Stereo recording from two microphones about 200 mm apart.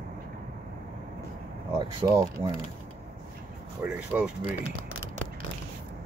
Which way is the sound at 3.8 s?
10° right (ahead or behind).